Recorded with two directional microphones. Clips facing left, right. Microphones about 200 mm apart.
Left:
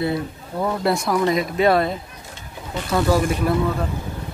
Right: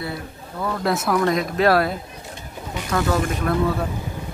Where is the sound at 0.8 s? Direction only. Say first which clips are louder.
Right 1 dB; 5° right (ahead or behind).